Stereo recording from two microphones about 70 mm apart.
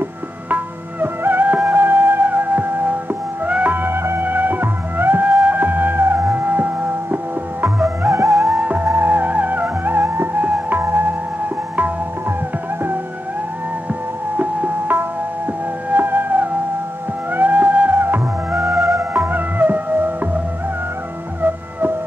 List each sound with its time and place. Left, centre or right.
1.0 s music: right
8.1 s music: right
8.5 s music: right
14.3 s music: right
18.6 s music: right
19.1 s music: right
21.4 s music: right